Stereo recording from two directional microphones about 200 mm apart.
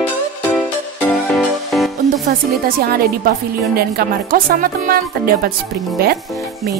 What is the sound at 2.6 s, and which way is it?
A woman's voice, 50° right (ahead or behind).